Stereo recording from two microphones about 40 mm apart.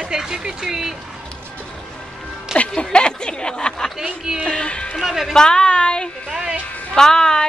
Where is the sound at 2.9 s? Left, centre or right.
Left.